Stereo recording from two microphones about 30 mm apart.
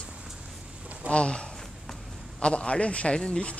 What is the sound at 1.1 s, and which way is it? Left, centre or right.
Speech, left.